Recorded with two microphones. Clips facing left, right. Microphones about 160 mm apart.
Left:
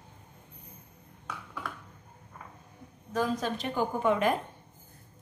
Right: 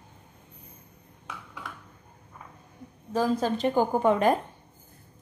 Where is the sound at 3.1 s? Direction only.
30° right (ahead or behind).